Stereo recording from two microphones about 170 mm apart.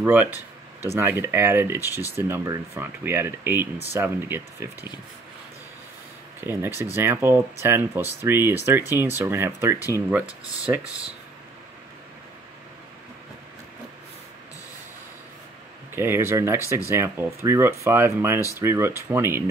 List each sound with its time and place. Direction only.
0.0 s speech: 10° right (ahead or behind)
6.4 s speech: 15° right (ahead or behind)
15.9 s speech: 15° right (ahead or behind)